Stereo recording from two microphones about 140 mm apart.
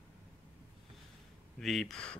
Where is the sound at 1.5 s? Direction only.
Centre (ahead or behind).